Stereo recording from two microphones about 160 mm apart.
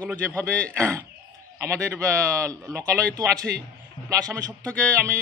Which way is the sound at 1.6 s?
15° right (ahead or behind).